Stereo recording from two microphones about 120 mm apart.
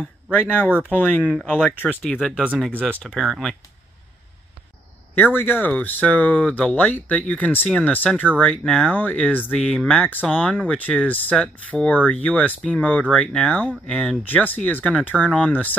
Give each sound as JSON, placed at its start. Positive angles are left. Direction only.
{"t": 0.4, "sound": "speech", "side_deg": 15}
{"t": 5.1, "sound": "speech", "side_deg": 15}